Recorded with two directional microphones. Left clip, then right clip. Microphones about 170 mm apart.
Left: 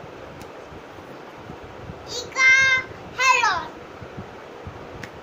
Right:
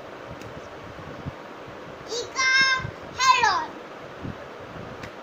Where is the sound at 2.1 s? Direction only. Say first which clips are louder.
Left 5 dB; 15° left (ahead or behind).